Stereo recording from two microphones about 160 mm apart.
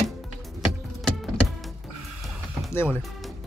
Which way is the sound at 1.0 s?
Centre (ahead or behind).